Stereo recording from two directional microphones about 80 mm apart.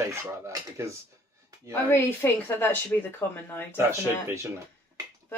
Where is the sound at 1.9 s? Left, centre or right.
Left.